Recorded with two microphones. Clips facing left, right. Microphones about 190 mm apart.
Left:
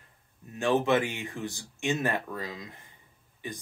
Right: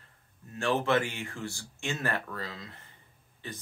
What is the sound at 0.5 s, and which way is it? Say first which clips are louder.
Speech: left 3 dB; 15° left (ahead or behind).